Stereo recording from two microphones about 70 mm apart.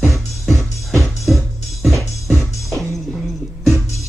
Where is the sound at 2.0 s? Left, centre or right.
Left.